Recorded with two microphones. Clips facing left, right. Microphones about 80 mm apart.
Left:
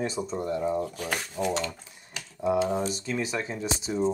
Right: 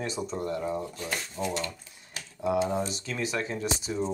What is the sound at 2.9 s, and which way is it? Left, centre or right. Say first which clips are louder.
Speech: left 3 dB; left.